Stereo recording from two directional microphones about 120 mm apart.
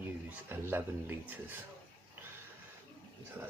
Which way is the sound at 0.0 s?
15° right (ahead or behind).